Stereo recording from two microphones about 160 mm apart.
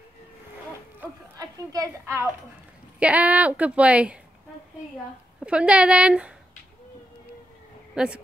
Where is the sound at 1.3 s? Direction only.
20° right (ahead or behind).